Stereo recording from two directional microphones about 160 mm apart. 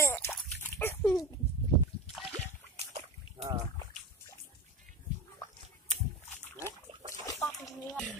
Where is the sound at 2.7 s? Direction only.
40° right (ahead or behind).